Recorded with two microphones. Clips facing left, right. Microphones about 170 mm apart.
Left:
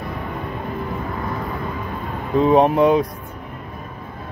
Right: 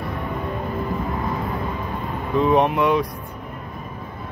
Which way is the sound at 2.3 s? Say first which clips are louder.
Left 3 dB; 35° left (ahead or behind).